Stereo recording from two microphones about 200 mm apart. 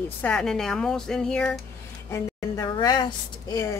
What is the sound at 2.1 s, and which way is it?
Speech, 20° left (ahead or behind).